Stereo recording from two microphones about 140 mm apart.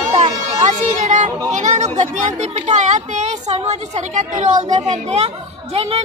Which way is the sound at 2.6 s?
55° right (ahead or behind).